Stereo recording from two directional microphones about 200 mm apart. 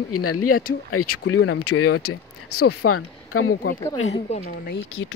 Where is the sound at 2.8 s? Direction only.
90° left.